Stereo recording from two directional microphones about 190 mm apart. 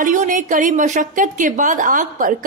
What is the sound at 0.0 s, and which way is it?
A woman's voice, 40° right (ahead or behind).